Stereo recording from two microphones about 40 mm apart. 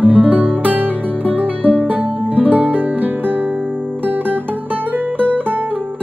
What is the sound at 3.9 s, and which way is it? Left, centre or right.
Music, right.